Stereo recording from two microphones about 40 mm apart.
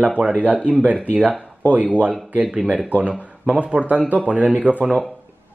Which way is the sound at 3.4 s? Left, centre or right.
Right.